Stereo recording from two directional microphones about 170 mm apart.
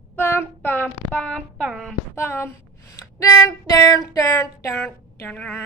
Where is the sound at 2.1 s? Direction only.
15° left (ahead or behind).